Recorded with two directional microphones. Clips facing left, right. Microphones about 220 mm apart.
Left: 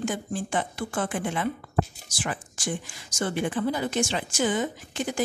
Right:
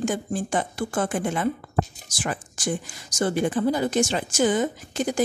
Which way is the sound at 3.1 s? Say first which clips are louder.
Right 4 dB; 40° right (ahead or behind).